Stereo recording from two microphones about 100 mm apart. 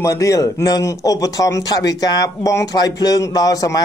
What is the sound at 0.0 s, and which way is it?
A man's voice, 35° left (ahead or behind).